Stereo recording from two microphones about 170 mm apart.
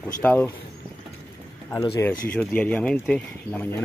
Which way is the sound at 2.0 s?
10° left (ahead or behind).